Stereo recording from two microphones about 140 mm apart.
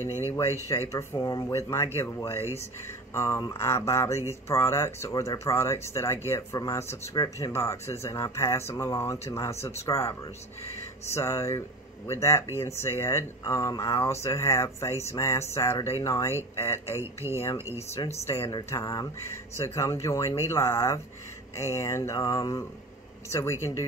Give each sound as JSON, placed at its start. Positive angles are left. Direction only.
{"t": 0.3, "sound": "speech", "side_deg": 20}
{"t": 17.0, "sound": "speech", "side_deg": -20}
{"t": 17.9, "sound": "speech", "side_deg": 20}
{"t": 18.3, "sound": "a woman's voice", "side_deg": 40}
{"t": 18.7, "sound": "speech", "side_deg": 25}